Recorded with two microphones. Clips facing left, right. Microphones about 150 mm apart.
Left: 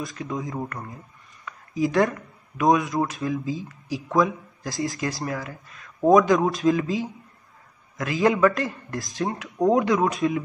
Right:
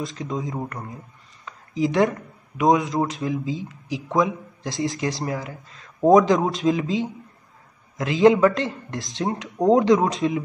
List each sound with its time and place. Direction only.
0.0 s speech: 20° right (ahead or behind)